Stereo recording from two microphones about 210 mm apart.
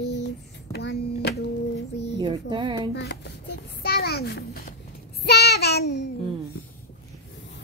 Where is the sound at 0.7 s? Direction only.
50° left (ahead or behind).